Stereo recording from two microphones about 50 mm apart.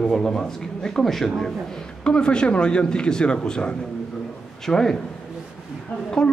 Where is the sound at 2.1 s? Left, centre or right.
Centre.